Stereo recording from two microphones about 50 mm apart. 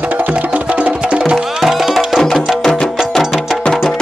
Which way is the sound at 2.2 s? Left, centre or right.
Centre.